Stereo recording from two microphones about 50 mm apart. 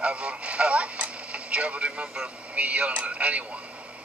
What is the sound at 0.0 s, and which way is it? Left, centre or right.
Radio, right.